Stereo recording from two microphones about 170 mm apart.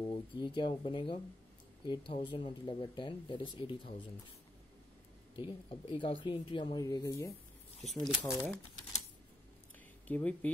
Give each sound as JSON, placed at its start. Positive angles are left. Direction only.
{"t": 0.0, "sound": "speech", "side_deg": 30}
{"t": 5.3, "sound": "speech", "side_deg": 30}
{"t": 7.8, "sound": "speech", "side_deg": 5}
{"t": 10.0, "sound": "speech", "side_deg": 10}